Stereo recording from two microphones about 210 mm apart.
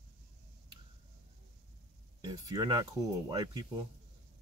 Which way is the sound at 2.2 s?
20° right (ahead or behind).